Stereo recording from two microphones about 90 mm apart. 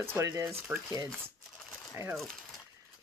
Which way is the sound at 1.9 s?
30° right (ahead or behind).